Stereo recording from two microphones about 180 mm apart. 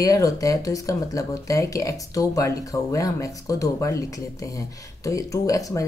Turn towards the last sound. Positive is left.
turn(degrees=20)  # may be behind; listen again after turning